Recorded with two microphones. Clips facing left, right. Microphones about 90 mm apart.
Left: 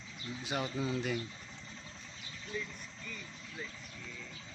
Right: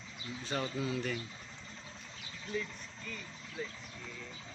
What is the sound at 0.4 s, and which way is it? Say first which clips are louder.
Cat: even; 15° left (ahead or behind).